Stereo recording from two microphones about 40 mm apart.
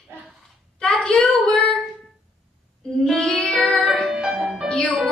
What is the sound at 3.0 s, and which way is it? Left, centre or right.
Child singing, centre.